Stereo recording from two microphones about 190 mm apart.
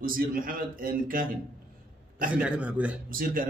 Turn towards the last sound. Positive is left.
turn(degrees=-50)  # may be behind; listen again after turning